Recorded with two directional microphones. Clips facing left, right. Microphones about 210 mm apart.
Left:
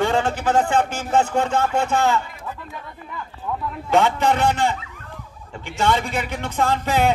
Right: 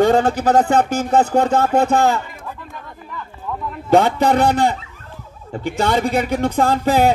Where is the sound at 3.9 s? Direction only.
35° right (ahead or behind).